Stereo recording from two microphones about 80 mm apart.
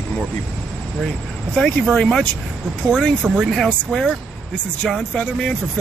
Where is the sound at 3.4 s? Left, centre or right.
Centre.